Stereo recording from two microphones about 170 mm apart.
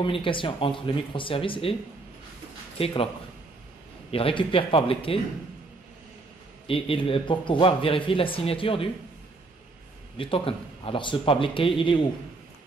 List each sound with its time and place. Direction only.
0.0 s a man's voice: 30° left (ahead or behind)
2.8 s a man's voice: 35° left (ahead or behind)
4.1 s a man's voice: 30° left (ahead or behind)
6.7 s a man's voice: 35° left (ahead or behind)
10.1 s a man's voice: 30° left (ahead or behind)